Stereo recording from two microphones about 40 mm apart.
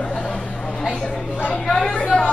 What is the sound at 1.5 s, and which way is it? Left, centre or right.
Speech, centre.